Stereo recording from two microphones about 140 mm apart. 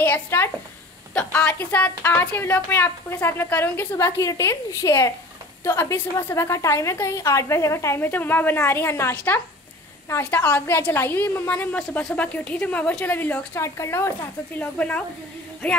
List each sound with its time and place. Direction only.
0.0 s speech: 15° left (ahead or behind)
1.6 s a woman's voice: 10° left (ahead or behind)